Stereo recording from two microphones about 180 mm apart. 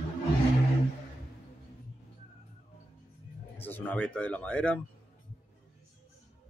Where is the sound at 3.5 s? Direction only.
10° left (ahead or behind).